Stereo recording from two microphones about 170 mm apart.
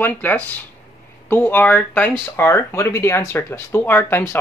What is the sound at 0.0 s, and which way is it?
Speech, 10° left (ahead or behind).